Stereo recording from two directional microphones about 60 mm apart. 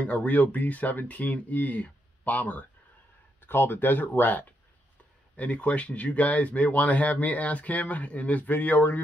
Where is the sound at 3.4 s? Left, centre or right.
Left.